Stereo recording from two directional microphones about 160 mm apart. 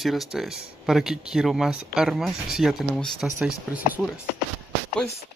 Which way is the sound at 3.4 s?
10° right (ahead or behind).